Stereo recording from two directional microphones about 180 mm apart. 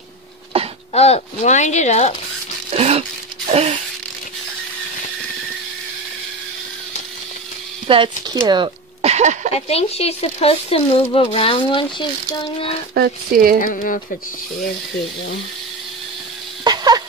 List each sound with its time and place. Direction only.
0.5 s throat clearing: 30° right (ahead or behind)
0.9 s speech: 35° left (ahead or behind)
2.7 s speech: 35° right (ahead or behind)
7.9 s speech: 30° right (ahead or behind)
9.0 s a sound: 40° right (ahead or behind)
9.5 s speech: 35° left (ahead or behind)
12.9 s speech: 55° right (ahead or behind)
13.6 s speech: 50° left (ahead or behind)
16.6 s a sound: 20° right (ahead or behind)